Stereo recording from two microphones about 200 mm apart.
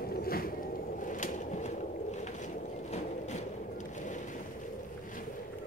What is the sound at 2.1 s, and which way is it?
Vehicle, 35° left (ahead or behind).